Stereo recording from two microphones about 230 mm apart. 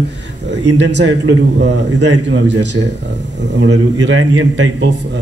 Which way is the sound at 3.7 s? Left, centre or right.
Right.